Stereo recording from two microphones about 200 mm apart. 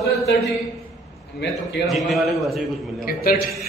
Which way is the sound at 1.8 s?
Centre (ahead or behind).